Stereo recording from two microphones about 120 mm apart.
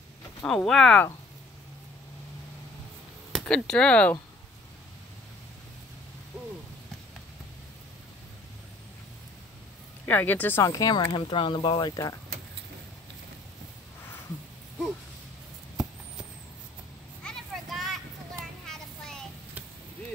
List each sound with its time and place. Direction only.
0.4 s speech: 5° left (ahead or behind)
3.3 s speech: 5° left (ahead or behind)
10.0 s speech: 15° left (ahead or behind)
10.6 s speech: 30° left (ahead or behind)
17.2 s a sound: 5° left (ahead or behind)
18.7 s child singing: 5° left (ahead or behind)